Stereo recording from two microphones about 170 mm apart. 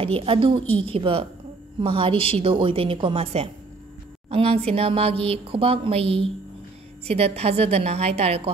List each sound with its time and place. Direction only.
0.0 s a woman's voice: 35° right (ahead or behind)